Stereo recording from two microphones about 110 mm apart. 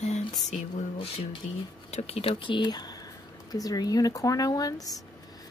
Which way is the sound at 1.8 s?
80° left.